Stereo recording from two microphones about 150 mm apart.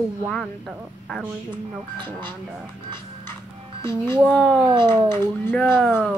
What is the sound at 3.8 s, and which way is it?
Speech, 15° left (ahead or behind).